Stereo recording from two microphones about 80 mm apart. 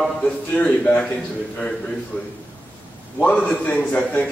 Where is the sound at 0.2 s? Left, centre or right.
Centre.